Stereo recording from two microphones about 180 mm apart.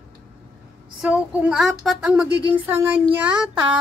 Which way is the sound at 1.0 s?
10° right (ahead or behind).